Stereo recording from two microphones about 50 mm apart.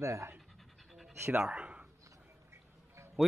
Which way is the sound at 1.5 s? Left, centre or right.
Right.